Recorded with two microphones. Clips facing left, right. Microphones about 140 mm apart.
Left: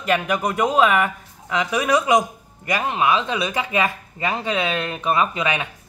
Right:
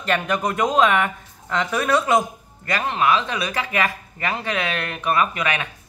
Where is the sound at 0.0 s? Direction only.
10° left (ahead or behind).